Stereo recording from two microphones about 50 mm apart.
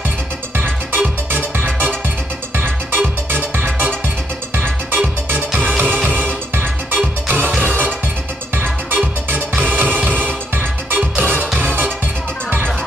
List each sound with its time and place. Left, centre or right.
0.6 s music: right